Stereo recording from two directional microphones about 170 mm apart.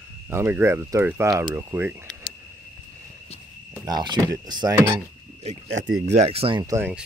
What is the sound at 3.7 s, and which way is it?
Speech, 25° right (ahead or behind).